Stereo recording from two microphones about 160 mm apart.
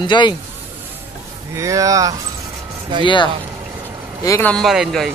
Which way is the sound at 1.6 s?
20° right (ahead or behind).